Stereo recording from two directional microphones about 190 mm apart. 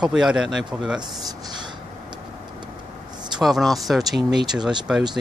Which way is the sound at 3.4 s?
Centre (ahead or behind).